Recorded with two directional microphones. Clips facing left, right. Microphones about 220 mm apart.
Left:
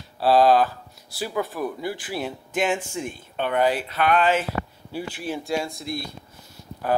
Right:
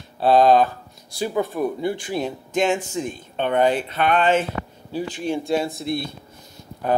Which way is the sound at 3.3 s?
25° right (ahead or behind).